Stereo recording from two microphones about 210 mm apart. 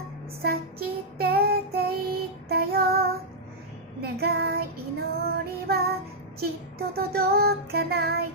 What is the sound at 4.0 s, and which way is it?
Child singing, 50° right (ahead or behind).